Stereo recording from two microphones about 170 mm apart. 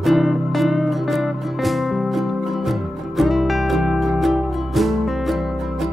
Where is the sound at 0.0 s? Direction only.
Centre (ahead or behind).